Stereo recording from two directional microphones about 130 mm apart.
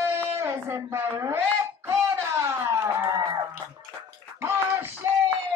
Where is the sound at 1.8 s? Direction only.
20° right (ahead or behind).